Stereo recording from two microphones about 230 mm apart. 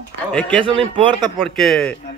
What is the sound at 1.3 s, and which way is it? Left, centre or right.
Speech, centre.